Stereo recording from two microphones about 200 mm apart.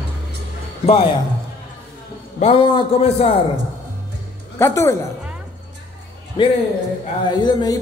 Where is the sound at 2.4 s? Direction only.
30° left (ahead or behind).